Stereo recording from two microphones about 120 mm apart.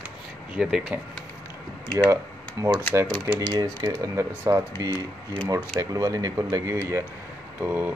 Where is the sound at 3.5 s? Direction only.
35° right (ahead or behind).